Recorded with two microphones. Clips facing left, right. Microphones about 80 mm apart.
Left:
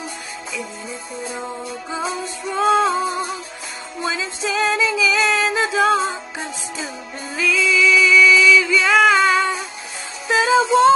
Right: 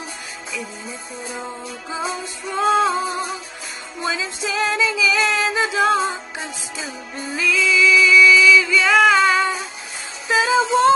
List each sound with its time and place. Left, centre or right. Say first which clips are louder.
1.4 s music: left 2 dB; centre
7.3 s music: even; centre